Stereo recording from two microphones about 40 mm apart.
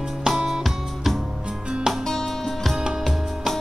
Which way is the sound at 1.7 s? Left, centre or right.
Centre.